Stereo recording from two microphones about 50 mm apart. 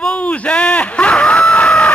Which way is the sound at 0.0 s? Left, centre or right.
Left.